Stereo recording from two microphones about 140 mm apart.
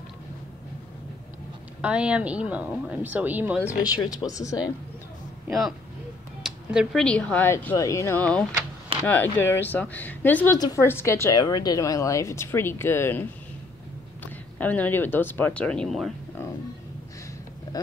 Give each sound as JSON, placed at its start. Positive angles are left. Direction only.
{"t": 1.8, "sound": "speech", "side_deg": -10}
{"t": 3.6, "sound": "a woman's voice", "side_deg": 25}
{"t": 5.5, "sound": "speech", "side_deg": 0}
{"t": 7.4, "sound": "a woman's voice", "side_deg": 20}
{"t": 8.2, "sound": "a woman's voice", "side_deg": 10}